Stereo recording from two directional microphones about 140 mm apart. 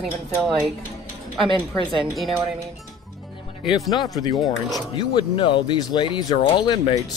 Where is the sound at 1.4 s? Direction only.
40° right (ahead or behind).